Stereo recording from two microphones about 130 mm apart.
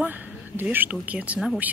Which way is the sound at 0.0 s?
15° right (ahead or behind).